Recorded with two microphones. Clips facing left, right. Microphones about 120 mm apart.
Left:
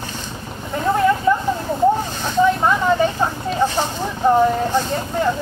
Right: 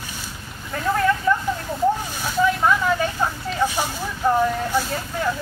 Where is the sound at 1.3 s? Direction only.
20° left (ahead or behind).